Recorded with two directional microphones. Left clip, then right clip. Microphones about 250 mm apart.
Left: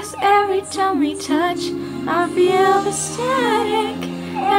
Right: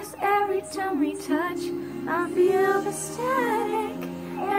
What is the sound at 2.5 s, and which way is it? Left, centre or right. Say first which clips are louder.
Music: left 7 dB; centre.